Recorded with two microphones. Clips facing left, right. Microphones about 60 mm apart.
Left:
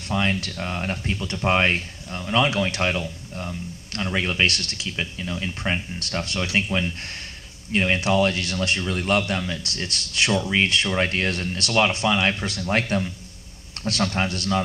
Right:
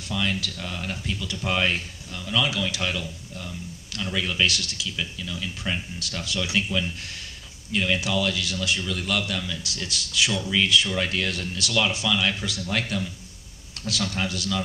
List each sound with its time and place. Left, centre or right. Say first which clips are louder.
0.1 s speech: left 4 dB; left
4.5 s speech: left 1 dB; left
4.8 s speech: left 3 dB; left
6.1 s speech: left 3 dB; left
6.5 s speech: left 3 dB; left
9.8 s speech: left 2 dB; left
10.4 s speech: left 2 dB; left
10.7 s speech: left 1 dB; left
12.4 s speech: left 4 dB; left